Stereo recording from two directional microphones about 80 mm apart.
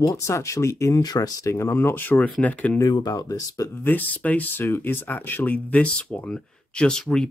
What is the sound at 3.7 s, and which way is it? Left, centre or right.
Speech, left.